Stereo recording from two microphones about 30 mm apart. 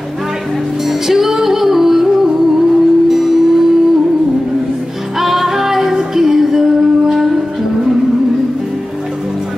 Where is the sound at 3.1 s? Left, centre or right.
Centre.